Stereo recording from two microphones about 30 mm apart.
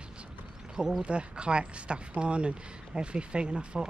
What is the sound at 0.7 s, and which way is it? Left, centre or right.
Speech, centre.